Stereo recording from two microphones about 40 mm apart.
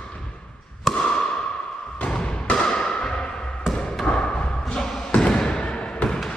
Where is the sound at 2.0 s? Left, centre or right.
Left.